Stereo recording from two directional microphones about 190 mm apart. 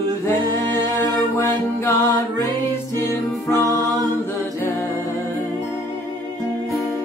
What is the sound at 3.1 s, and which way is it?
Music, 15° left (ahead or behind).